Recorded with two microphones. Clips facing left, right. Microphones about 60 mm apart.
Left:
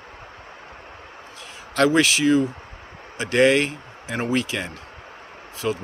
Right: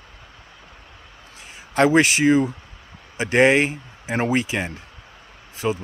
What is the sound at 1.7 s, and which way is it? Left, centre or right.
Speech, right.